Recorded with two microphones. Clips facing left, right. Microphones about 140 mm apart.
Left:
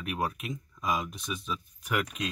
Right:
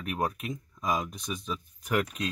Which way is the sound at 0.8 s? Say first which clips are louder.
Right 1 dB; 40° right (ahead or behind).